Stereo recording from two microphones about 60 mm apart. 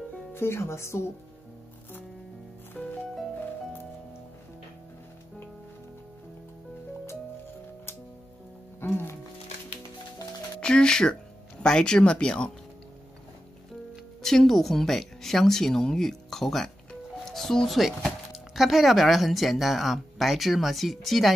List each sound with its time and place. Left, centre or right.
0.3 s speech: left
2.8 s music: left
8.8 s music: left
10.6 s music: centre
11.6 s speech: centre
14.2 s speech: centre